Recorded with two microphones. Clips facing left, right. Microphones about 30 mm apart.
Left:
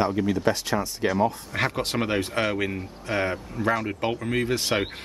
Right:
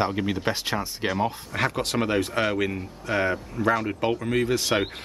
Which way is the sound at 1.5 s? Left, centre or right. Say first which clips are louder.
Even; centre.